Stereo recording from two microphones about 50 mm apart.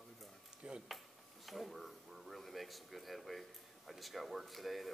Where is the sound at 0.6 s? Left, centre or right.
Centre.